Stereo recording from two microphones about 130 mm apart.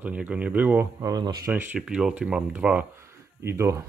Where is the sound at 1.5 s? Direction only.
15° right (ahead or behind).